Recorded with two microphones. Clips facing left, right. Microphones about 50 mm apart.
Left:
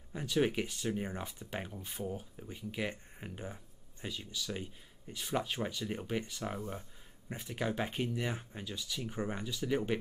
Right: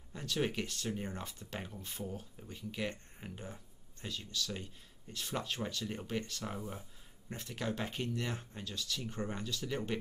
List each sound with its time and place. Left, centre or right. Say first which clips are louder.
0.1 s speech: left 4 dB; centre